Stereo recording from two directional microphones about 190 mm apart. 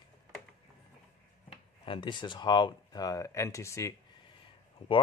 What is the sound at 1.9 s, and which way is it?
Speech, 25° left (ahead or behind).